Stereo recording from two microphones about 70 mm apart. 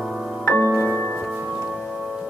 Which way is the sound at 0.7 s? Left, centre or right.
Right.